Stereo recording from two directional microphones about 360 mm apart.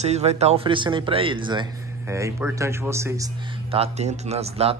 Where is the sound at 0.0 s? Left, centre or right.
Centre.